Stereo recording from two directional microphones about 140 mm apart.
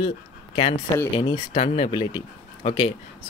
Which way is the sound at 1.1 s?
40° left (ahead or behind).